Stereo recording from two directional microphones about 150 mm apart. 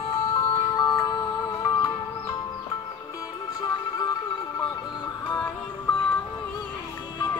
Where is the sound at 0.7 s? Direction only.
25° left (ahead or behind).